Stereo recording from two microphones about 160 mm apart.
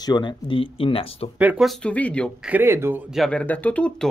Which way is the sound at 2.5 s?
15° right (ahead or behind).